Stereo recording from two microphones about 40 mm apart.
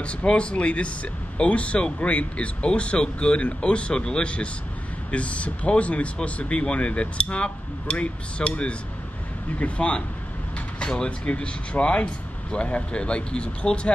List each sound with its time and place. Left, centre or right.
0.0 s speech: left